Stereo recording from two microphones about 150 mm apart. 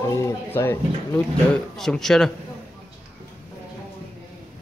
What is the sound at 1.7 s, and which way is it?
Speech, 5° left (ahead or behind).